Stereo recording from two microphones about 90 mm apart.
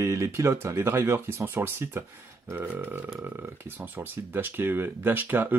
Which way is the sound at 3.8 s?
20° right (ahead or behind).